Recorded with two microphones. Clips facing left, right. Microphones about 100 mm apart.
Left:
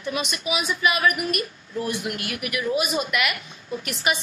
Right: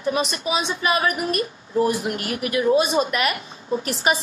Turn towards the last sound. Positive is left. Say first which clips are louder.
# right 4 dB
turn(degrees=-35)  # may be behind; listen again after turning